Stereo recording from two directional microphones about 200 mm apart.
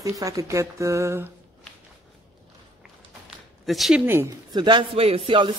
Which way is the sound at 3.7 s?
Centre (ahead or behind).